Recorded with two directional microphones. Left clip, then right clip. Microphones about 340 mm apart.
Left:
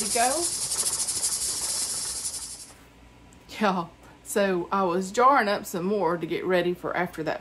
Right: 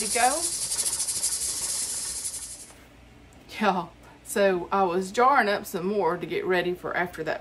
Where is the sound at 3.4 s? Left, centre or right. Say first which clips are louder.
Right 1 dB; centre.